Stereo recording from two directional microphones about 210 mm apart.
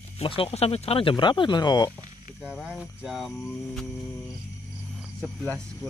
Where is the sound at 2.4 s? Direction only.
5° right (ahead or behind).